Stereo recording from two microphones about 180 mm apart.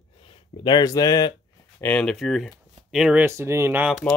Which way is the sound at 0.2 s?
30° left (ahead or behind).